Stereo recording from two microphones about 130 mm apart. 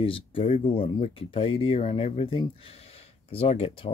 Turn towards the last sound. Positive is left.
turn(degrees=45)  # may be behind; listen again after turning